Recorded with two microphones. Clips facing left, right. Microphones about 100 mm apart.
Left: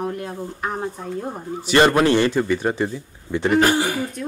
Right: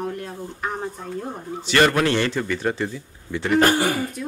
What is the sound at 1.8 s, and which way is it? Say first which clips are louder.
A man's voice: left 3 dB; 20° left (ahead or behind).